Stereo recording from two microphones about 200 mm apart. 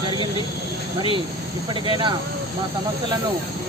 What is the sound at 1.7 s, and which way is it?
Speech, 20° right (ahead or behind).